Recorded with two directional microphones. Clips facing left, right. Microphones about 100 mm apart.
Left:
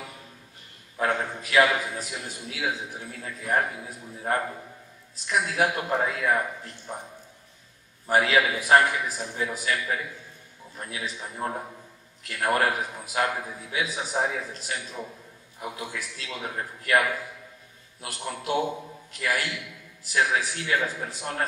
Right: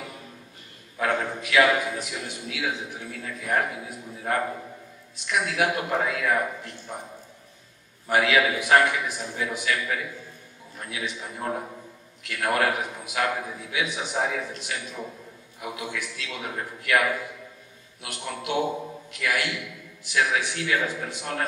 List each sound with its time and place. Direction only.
0.9 s a man's voice: 30° left (ahead or behind)
8.1 s a man's voice: 35° left (ahead or behind)
18.0 s a man's voice: 35° left (ahead or behind)